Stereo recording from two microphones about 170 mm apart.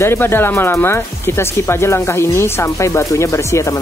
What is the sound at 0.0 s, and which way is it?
Speech, 15° left (ahead or behind).